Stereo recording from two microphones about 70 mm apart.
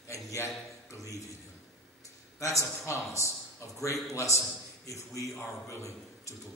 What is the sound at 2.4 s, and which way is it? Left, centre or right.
A man's voice, left.